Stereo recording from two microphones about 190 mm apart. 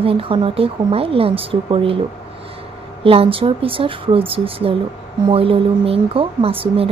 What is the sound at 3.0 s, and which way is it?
Speech, 30° right (ahead or behind).